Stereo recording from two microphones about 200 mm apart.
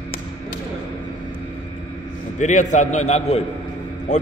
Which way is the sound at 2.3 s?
35° left (ahead or behind).